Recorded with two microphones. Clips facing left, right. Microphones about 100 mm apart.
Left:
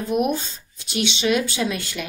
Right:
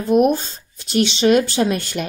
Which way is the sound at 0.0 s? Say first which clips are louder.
Right 7 dB; 40° right (ahead or behind).